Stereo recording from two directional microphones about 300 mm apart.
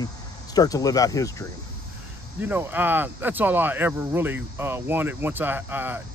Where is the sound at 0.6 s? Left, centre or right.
Centre.